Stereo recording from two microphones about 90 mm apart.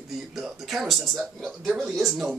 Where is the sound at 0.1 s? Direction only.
5° right (ahead or behind).